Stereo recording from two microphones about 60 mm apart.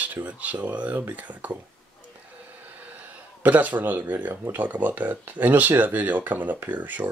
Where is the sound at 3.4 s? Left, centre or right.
Right.